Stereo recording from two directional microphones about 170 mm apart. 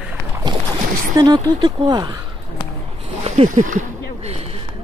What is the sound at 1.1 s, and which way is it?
Speech, 25° right (ahead or behind).